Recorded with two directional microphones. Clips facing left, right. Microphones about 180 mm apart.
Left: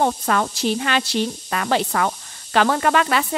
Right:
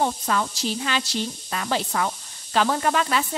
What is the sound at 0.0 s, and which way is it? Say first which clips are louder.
Speech: left 4 dB; 65° left (ahead or behind).